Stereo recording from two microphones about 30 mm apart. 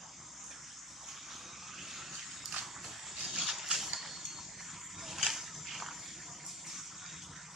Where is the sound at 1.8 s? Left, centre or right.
Centre.